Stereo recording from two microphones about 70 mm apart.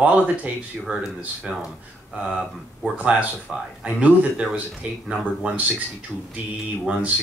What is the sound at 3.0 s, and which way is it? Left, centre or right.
Speech, right.